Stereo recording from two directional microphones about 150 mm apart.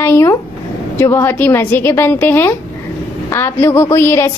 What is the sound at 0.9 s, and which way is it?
A woman's voice, 15° left (ahead or behind).